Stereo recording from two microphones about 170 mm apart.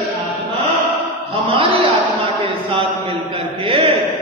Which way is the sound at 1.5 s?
30° right (ahead or behind).